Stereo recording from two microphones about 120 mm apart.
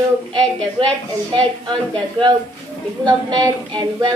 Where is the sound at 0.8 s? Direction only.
45° right (ahead or behind).